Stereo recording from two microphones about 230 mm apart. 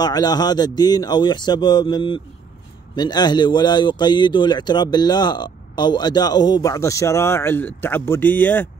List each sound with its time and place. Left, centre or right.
0.0 s speech: centre